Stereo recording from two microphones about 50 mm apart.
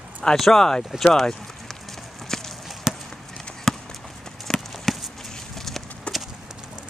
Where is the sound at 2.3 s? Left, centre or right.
Centre.